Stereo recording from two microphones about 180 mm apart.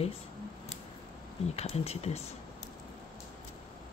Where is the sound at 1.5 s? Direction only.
35° left (ahead or behind).